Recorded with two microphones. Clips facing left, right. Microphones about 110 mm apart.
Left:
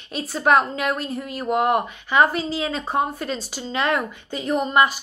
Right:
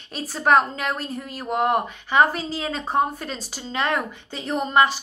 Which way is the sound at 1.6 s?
35° right (ahead or behind).